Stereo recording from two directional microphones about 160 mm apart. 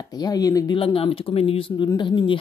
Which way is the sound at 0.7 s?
35° left (ahead or behind).